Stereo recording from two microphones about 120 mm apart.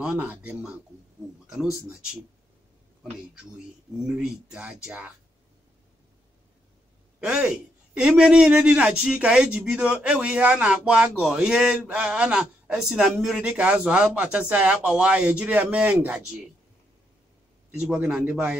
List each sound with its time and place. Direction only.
0.0 s a man's voice: 10° right (ahead or behind)
7.2 s a man's voice: 5° right (ahead or behind)
17.8 s a man's voice: 10° right (ahead or behind)